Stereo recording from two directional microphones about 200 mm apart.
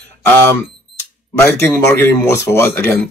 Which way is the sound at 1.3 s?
10° left (ahead or behind).